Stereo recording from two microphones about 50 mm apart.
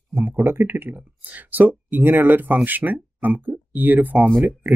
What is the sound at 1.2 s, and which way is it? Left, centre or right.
Speech, right.